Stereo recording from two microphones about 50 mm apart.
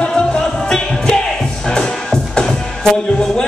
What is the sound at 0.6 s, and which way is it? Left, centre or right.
Music, centre.